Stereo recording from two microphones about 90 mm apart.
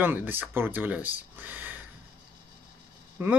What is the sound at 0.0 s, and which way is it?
Speech, 20° right (ahead or behind).